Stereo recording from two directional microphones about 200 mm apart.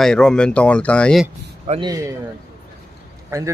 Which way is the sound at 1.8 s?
15° right (ahead or behind).